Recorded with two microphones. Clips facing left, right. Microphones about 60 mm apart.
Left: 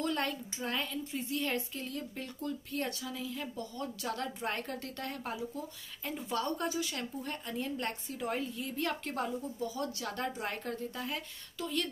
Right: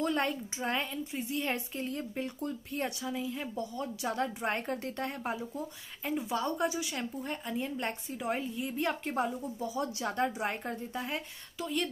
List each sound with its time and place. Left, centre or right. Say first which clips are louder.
0.0 s a woman's voice: right 3 dB; right
6.0 s a woman's voice: right 3 dB; centre